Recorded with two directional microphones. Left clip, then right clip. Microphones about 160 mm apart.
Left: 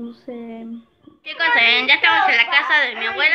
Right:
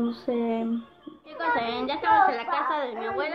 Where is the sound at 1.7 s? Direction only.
35° left (ahead or behind).